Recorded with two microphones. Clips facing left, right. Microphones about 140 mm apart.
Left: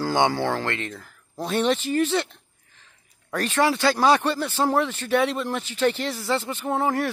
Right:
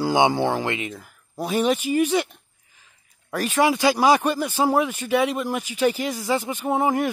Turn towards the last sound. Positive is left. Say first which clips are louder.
# right 2 dB
turn(degrees=-15)  # may be behind; listen again after turning